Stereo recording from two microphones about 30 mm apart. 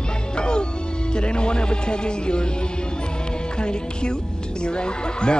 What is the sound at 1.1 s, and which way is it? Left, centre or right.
A man's voice, left.